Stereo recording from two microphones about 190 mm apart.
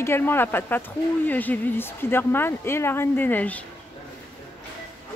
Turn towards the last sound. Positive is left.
turn(degrees=10)  # may be behind; listen again after turning